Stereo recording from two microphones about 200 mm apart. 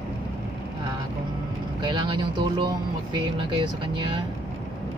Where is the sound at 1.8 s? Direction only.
20° right (ahead or behind).